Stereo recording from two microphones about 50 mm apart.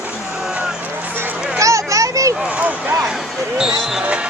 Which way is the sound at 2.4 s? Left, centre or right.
Right.